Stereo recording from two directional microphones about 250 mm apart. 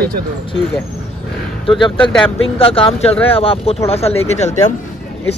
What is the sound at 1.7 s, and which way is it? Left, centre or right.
Speech, left.